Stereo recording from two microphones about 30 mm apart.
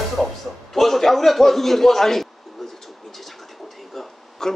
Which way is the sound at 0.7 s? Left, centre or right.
Centre.